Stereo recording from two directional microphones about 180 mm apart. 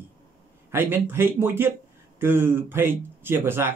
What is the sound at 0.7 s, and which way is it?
Mantra, 10° right (ahead or behind).